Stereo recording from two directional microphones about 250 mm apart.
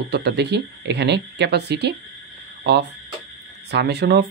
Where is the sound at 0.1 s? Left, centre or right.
Right.